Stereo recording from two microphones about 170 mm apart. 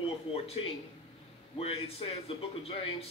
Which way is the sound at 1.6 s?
35° left (ahead or behind).